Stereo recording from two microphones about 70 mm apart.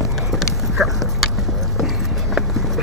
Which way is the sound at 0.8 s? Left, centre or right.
Right.